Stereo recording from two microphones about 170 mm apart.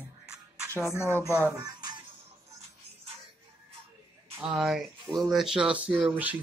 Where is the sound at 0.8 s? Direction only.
15° left (ahead or behind).